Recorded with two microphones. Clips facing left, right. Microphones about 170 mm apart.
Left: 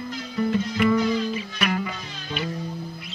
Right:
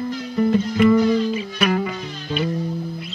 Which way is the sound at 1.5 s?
35° right (ahead or behind).